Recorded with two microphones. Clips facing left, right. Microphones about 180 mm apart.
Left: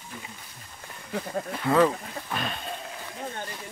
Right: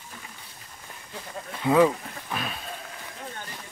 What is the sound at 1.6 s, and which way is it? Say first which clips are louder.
Speech: right 2 dB; 15° right (ahead or behind).